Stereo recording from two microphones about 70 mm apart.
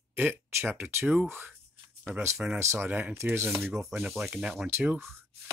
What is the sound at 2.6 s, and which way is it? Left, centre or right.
Speech, right.